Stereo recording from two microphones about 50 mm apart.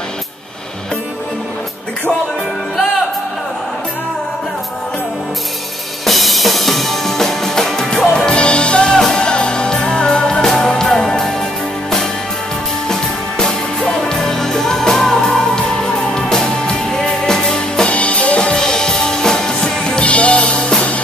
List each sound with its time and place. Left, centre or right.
6.0 s music: centre
12.8 s music: centre